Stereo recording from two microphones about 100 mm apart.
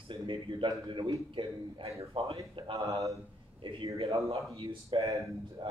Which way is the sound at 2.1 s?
75° right (ahead or behind).